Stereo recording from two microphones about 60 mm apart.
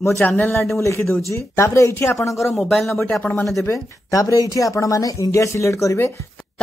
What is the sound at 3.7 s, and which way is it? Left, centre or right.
Speech, left.